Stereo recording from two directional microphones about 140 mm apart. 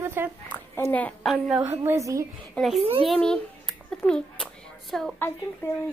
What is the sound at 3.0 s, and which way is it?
Speech, 5° left (ahead or behind).